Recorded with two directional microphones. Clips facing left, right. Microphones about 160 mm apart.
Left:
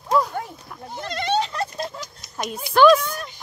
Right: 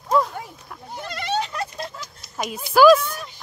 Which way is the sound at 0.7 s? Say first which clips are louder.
Left 2 dB; 5° right (ahead or behind).